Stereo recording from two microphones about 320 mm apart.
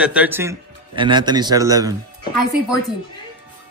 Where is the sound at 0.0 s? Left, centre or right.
Centre.